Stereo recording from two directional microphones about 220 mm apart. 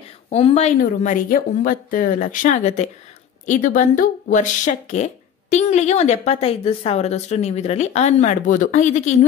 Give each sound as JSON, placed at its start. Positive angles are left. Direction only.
{"t": 0.3, "sound": "speech", "side_deg": 30}